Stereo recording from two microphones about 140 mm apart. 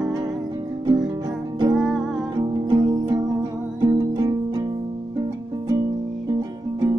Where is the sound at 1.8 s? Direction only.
5° right (ahead or behind).